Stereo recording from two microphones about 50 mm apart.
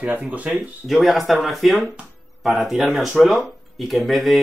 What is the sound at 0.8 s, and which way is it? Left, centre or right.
Speech, centre.